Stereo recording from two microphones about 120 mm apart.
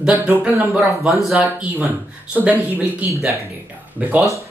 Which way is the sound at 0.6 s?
Centre (ahead or behind).